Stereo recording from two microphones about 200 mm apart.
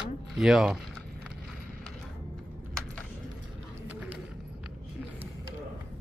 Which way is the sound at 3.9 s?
5° right (ahead or behind).